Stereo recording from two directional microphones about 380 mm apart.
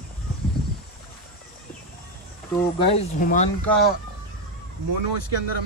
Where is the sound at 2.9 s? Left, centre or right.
Centre.